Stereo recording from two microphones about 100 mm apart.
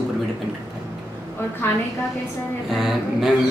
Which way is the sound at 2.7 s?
5° right (ahead or behind).